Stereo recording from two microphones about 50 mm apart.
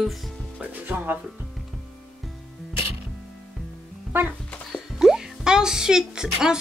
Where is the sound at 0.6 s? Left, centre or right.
Right.